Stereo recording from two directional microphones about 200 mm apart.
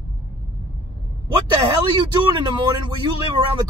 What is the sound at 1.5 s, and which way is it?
Speech, 25° right (ahead or behind).